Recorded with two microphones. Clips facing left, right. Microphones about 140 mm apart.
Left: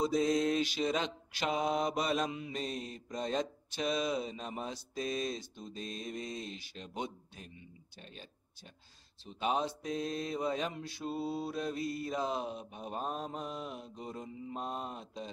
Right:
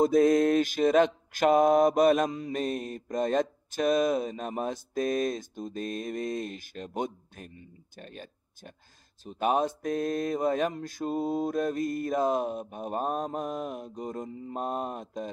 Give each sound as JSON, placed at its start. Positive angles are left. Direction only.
{"t": 0.0, "sound": "mantra", "side_deg": -55}